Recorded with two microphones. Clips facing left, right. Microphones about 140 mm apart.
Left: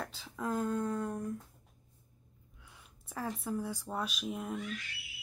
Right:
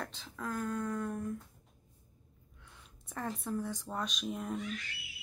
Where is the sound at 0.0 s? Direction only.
5° left (ahead or behind).